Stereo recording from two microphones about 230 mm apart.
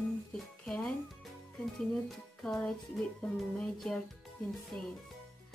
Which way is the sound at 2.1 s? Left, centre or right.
Centre.